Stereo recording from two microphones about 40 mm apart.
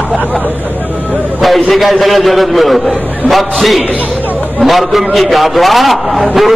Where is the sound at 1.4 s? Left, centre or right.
Centre.